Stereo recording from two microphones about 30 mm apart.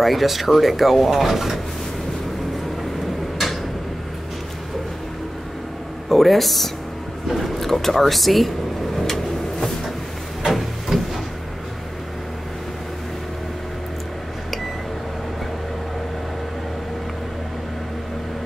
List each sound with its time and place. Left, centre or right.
0.0 s speech: centre
6.0 s speech: centre
10.4 s a sound: centre